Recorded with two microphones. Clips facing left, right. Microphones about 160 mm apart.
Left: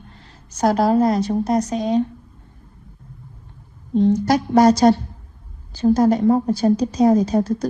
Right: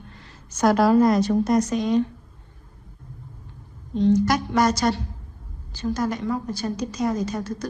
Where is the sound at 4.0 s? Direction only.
60° left (ahead or behind).